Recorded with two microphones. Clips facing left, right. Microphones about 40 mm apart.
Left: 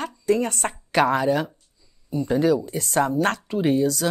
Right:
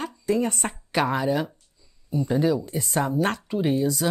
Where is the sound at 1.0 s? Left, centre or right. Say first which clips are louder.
Left 3 dB; centre.